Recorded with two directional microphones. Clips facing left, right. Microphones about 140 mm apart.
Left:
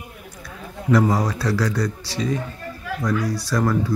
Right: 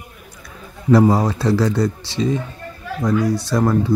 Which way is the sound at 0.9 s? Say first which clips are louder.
Right 5 dB; 30° right (ahead or behind).